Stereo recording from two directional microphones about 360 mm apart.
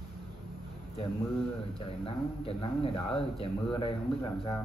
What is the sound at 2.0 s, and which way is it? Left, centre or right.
Speech, centre.